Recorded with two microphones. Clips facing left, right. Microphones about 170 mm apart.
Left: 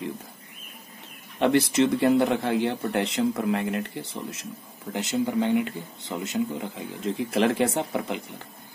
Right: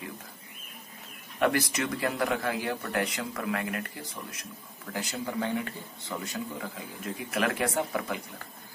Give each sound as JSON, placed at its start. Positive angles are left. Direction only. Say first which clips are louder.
{"t": 1.4, "sound": "speech", "louder": "left 7 dB", "side_deg": 25}